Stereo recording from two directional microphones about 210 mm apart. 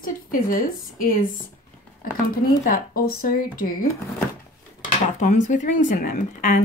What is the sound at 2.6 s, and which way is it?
Speech, 45° left (ahead or behind).